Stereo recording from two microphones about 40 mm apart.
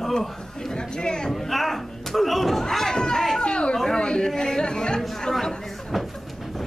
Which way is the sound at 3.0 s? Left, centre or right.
Centre.